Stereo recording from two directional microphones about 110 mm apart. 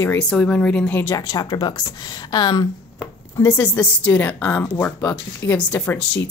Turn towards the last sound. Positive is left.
turn(degrees=15)  # may be behind; listen again after turning